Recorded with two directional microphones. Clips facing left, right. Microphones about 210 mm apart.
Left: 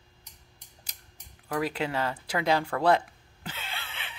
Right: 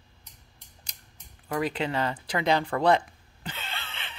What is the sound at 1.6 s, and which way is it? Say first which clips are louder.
Speech: right 2 dB; 5° left (ahead or behind).